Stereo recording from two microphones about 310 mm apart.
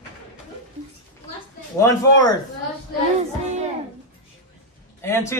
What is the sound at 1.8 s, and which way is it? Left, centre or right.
Speech, centre.